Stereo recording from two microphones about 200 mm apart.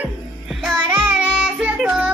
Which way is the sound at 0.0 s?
Centre (ahead or behind).